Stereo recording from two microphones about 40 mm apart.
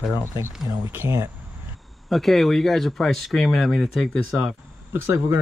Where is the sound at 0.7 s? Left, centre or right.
Right.